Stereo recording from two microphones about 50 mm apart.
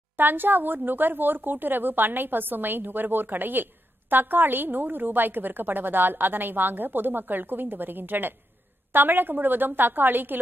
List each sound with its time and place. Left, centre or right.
0.2 s a woman's voice: right